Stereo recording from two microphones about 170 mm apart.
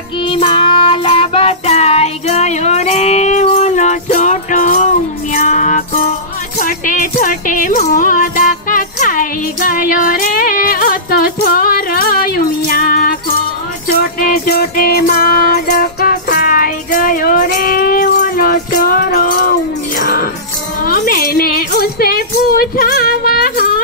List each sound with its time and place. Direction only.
0.3 s child singing: 30° left (ahead or behind); by 5.9 s 50° left (ahead or behind)
6.6 s music: 50° left (ahead or behind)